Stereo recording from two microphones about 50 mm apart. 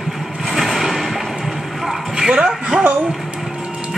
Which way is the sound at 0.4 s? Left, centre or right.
Centre.